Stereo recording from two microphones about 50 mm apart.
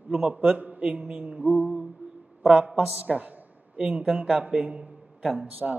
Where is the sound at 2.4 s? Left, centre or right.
Right.